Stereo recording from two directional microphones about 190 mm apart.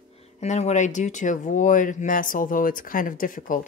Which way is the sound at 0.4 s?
35° left (ahead or behind).